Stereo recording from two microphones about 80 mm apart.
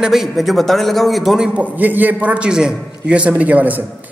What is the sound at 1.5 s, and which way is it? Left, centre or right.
A man's voice, centre.